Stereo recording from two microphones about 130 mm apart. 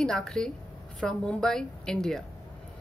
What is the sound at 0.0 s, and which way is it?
A woman's voice, 5° left (ahead or behind).